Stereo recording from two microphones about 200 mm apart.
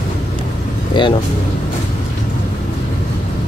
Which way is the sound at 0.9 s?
25° left (ahead or behind).